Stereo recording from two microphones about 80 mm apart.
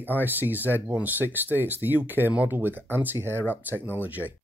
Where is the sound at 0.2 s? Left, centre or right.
Right.